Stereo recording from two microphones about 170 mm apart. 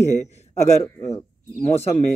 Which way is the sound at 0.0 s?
40° left (ahead or behind).